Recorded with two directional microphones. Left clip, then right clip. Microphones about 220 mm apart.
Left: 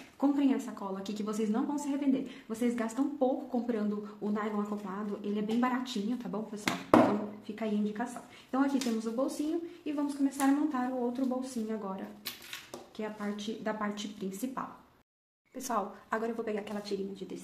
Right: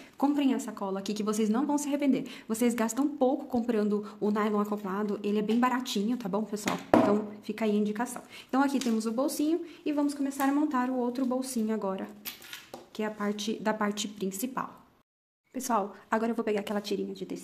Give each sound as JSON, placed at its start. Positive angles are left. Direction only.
{"t": 0.2, "sound": "a woman's voice", "side_deg": -40}